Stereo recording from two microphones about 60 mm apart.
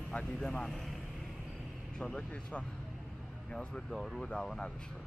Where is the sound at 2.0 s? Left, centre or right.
Centre.